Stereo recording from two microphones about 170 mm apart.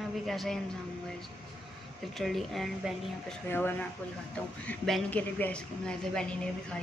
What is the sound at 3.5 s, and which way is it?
A woman's voice, 10° left (ahead or behind).